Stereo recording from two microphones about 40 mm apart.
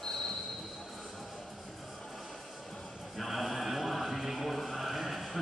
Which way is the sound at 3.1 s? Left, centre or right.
Centre.